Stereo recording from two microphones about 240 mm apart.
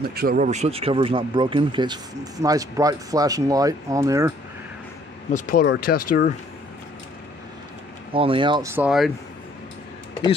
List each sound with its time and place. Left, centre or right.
0.1 s speech: right; by 4.3 s centre
5.3 s speech: left
8.1 s speech: right; by 9.1 s centre